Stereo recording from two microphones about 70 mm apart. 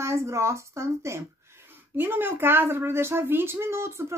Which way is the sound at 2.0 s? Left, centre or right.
Right.